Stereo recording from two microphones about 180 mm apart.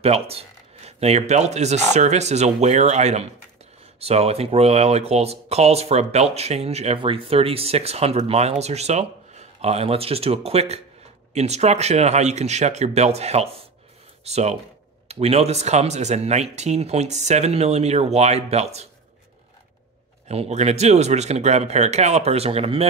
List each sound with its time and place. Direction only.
0.0 s speech: 35° right (ahead or behind)
20.2 s speech: 35° right (ahead or behind)